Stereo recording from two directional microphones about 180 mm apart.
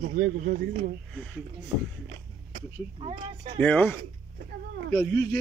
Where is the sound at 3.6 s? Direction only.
10° left (ahead or behind).